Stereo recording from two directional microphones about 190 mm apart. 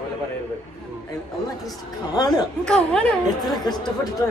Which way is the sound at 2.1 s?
20° left (ahead or behind).